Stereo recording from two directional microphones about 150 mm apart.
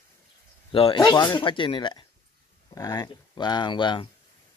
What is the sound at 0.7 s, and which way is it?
Speech, 35° left (ahead or behind).